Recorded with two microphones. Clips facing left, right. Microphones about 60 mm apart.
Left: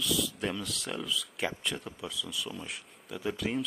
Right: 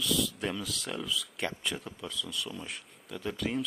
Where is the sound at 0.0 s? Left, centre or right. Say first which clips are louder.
Right 1 dB; centre.